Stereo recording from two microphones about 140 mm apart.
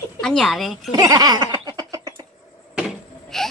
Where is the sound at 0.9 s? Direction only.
25° right (ahead or behind).